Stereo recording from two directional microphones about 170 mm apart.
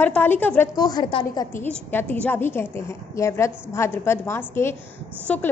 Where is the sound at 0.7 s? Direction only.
25° left (ahead or behind).